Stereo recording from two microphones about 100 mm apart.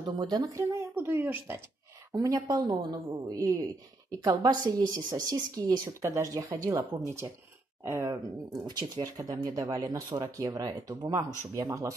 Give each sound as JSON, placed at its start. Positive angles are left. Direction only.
{"t": 0.0, "sound": "speech", "side_deg": -45}
{"t": 2.1, "sound": "speech", "side_deg": -35}
{"t": 2.7, "sound": "a woman's voice", "side_deg": -50}
{"t": 3.1, "sound": "speech", "side_deg": -40}